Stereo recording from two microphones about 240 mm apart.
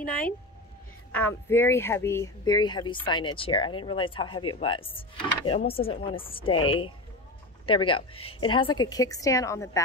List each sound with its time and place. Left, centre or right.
1.1 s speech: centre